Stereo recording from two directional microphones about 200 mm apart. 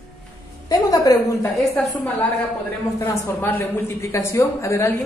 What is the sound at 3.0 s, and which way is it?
A man's voice, 10° left (ahead or behind).